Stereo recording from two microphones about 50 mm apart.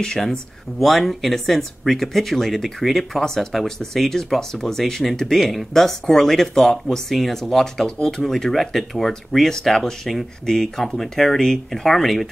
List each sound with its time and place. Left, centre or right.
0.0 s speech: centre
0.7 s speech: centre